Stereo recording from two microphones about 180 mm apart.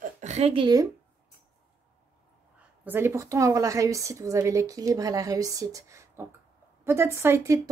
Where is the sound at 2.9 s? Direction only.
15° right (ahead or behind).